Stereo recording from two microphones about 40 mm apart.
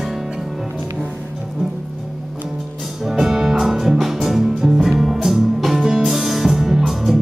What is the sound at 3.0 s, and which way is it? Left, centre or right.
Music, centre.